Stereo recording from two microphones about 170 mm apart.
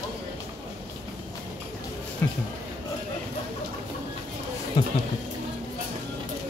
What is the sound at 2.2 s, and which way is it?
Speech, 10° left (ahead or behind).